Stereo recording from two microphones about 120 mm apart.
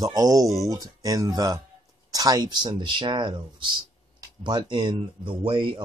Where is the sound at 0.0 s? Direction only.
30° right (ahead or behind).